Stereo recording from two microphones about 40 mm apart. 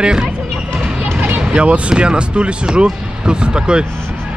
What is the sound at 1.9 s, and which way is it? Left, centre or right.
Speech, right.